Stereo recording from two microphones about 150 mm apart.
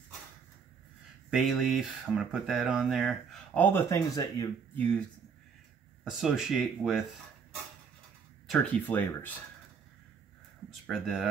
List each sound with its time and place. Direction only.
1.3 s speech: centre (ahead or behind)
3.5 s speech: 15° left (ahead or behind)
4.7 s speech: 10° left (ahead or behind)
6.0 s speech: centre (ahead or behind)
8.5 s speech: 10° left (ahead or behind)
10.7 s speech: centre (ahead or behind)